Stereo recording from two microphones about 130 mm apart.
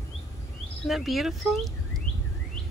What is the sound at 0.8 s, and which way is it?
Speech, centre (ahead or behind).